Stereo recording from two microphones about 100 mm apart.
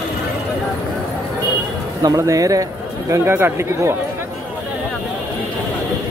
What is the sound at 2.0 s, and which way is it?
Speech, 35° right (ahead or behind).